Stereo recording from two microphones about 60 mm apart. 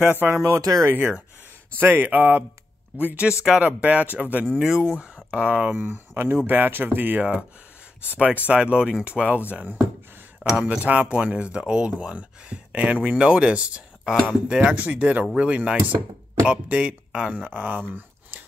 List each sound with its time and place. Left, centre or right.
0.1 s speech: right
0.4 s speech: right
0.9 s speech: right
5.8 s speech: right